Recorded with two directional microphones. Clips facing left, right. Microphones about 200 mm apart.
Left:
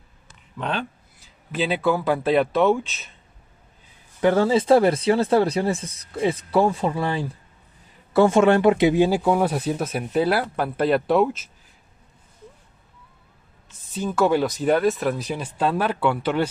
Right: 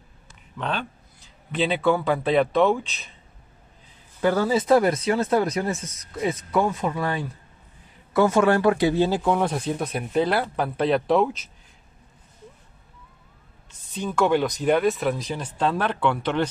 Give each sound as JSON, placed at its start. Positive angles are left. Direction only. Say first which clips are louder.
{"t": 1.2, "sound": "speech", "louder": "right 1 dB", "side_deg": 5}
{"t": 4.2, "sound": "speech", "louder": "left 3 dB", "side_deg": 25}
{"t": 13.8, "sound": "speech", "louder": "left 2 dB", "side_deg": 5}